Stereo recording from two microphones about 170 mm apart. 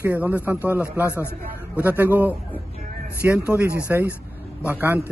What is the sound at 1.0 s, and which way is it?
Speech, 15° left (ahead or behind).